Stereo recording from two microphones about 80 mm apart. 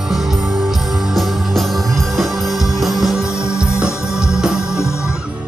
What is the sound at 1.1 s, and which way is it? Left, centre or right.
Music, centre.